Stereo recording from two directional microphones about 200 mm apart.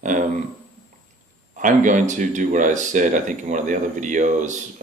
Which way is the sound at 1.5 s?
40° right (ahead or behind).